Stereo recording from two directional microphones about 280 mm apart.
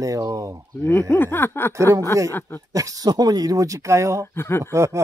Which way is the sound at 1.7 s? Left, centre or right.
Centre.